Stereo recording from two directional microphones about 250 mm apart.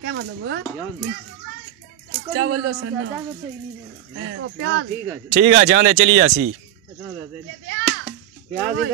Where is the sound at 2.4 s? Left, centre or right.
Right.